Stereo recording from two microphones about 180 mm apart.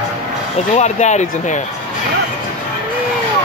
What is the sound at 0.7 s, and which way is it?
Speech, 40° left (ahead or behind).